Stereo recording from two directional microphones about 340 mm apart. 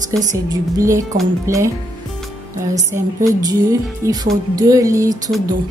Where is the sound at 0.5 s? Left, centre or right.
Centre.